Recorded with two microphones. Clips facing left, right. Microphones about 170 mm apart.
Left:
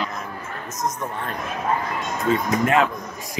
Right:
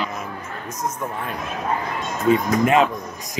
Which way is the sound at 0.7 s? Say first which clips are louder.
Even; 10° right (ahead or behind).